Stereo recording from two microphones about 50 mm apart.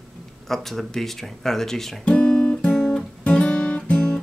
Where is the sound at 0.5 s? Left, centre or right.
Centre.